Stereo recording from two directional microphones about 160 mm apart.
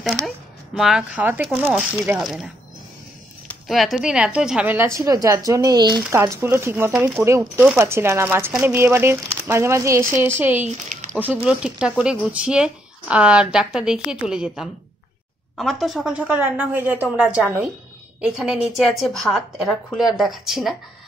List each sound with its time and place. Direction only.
0.0 s a woman's voice: centre (ahead or behind)
3.6 s a woman's voice: centre (ahead or behind)